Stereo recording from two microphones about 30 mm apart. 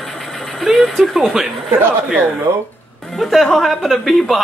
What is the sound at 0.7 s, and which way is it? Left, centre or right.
Speech, centre.